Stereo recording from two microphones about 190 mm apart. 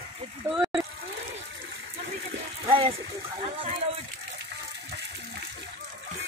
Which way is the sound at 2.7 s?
30° right (ahead or behind).